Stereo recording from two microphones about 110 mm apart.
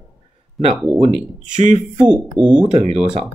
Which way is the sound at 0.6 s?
Centre (ahead or behind).